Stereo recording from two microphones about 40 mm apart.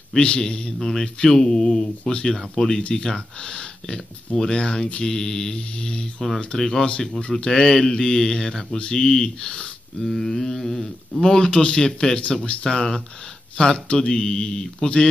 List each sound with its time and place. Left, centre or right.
0.1 s speech: centre
6.6 s speech: centre
7.2 s speech: left
9.9 s speech: centre
11.2 s speech: centre
12.6 s speech: centre